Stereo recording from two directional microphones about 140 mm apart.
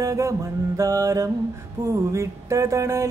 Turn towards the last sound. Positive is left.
turn(degrees=-20)  # may be behind; listen again after turning